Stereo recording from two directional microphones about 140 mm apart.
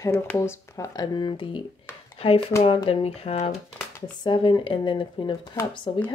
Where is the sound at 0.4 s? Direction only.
20° left (ahead or behind); by 1.6 s 35° left (ahead or behind).